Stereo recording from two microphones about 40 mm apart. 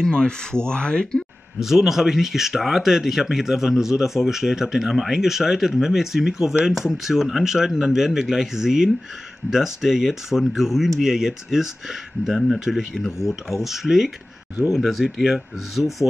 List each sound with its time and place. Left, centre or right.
0.0 s speech: centre
1.6 s speech: centre